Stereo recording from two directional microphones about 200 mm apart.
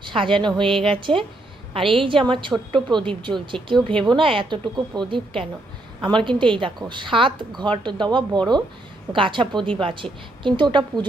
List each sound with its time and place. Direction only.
0.0 s a woman's voice: 25° right (ahead or behind)